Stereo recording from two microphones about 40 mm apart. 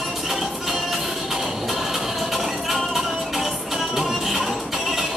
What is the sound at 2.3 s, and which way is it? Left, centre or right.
Music, centre.